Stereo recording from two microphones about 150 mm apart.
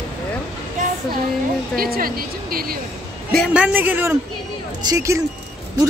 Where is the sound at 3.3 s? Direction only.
Centre (ahead or behind); by 5.2 s 20° right (ahead or behind).